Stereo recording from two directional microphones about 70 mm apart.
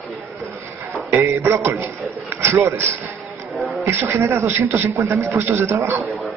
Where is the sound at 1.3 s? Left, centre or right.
Right.